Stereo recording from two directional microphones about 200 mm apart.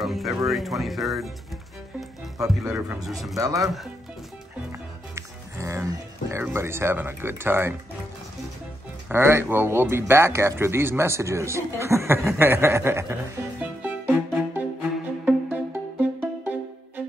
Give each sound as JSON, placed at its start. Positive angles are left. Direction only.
{"t": 0.0, "sound": "speech", "side_deg": 0}
{"t": 2.7, "sound": "speech", "side_deg": 0}
{"t": 3.3, "sound": "speech", "side_deg": -15}
{"t": 5.1, "sound": "speech", "side_deg": -15}
{"t": 9.1, "sound": "speech", "side_deg": -10}
{"t": 12.3, "sound": "music", "side_deg": -10}